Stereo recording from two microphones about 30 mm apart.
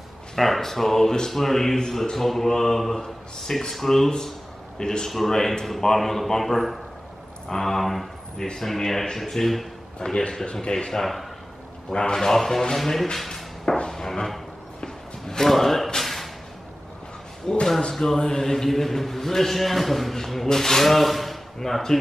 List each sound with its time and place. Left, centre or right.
0.4 s a man's voice: centre
4.7 s a man's voice: left
5.1 s a man's voice: centre
7.4 s a man's voice: centre; by 10.9 s left
10.9 s a man's voice: centre
11.9 s a man's voice: left
13.8 s music: centre
14.8 s a sound: centre
15.4 s a sound: centre
17.5 s a man's voice: left; by 20.2 s centre
20.4 s a man's voice: centre